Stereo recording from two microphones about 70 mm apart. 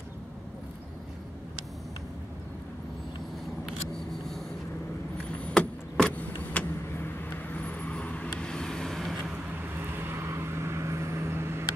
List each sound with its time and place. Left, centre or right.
5.4 s vehicle: centre
6.5 s vehicle: left; by 9.2 s centre
9.9 s vehicle: right